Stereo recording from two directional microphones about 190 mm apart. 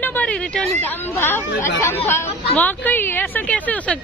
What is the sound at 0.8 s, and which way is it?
A woman's voice, 10° left (ahead or behind).